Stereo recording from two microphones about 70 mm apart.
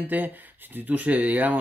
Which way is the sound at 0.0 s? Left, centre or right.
Right.